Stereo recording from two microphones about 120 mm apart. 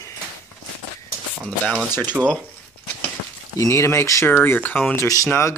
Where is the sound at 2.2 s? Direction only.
10° right (ahead or behind).